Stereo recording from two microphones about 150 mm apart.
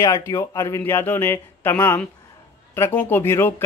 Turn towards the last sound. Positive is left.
turn(degrees=15)  # may be behind; listen again after turning